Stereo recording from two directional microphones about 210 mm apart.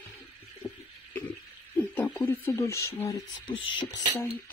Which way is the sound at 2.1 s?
10° left (ahead or behind).